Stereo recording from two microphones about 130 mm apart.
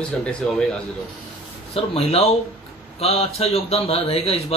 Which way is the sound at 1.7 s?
50° left (ahead or behind).